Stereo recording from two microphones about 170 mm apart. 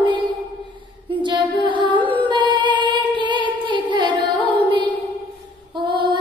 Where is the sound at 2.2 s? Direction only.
25° right (ahead or behind).